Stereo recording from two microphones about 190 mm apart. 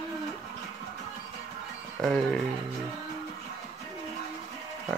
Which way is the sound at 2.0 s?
Centre (ahead or behind).